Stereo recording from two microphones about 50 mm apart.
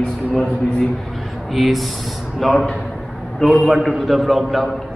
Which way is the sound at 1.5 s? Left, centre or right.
Centre.